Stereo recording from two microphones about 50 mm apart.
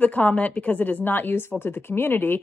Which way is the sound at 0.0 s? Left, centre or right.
Left.